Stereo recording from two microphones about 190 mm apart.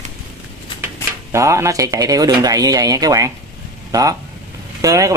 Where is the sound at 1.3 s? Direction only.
15° right (ahead or behind).